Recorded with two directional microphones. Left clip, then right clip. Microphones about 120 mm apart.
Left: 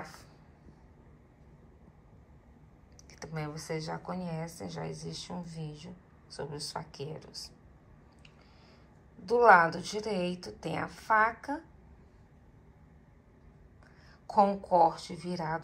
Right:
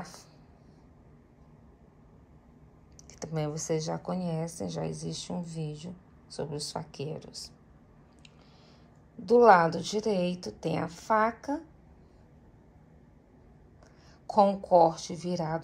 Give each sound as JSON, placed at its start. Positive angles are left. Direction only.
{"t": 3.3, "sound": "a woman's voice", "side_deg": -35}
{"t": 9.3, "sound": "a woman's voice", "side_deg": -25}
{"t": 14.2, "sound": "a woman's voice", "side_deg": -20}